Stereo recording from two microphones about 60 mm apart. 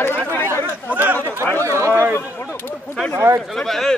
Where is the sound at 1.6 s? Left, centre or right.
Right.